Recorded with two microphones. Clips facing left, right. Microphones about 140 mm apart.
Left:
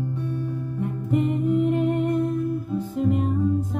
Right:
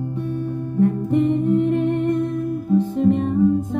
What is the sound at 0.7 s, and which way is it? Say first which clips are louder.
Music: right 7 dB; 5° left (ahead or behind).